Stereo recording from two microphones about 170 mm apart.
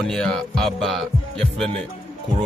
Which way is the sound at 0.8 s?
Centre (ahead or behind).